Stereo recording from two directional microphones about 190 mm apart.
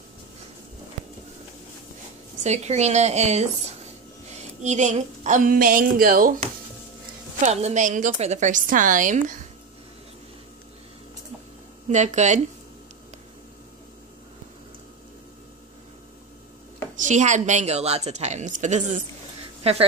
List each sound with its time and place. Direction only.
2.4 s a woman's voice: 35° right (ahead or behind)
7.4 s a woman's voice: 35° right (ahead or behind)
11.9 s a woman's voice: 40° right (ahead or behind)
16.9 s a woman's voice: 40° right (ahead or behind)